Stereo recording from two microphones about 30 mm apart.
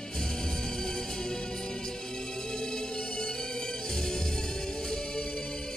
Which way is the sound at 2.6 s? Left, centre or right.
Left.